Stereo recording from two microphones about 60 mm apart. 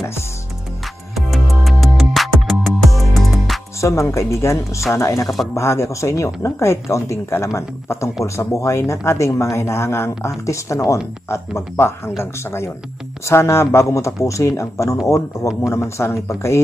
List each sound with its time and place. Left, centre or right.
1.1 s music: centre
3.8 s speech: left